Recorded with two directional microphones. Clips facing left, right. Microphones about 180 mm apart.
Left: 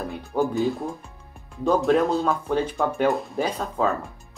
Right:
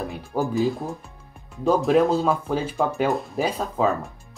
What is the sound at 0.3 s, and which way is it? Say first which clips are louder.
Speech: even; centre (ahead or behind).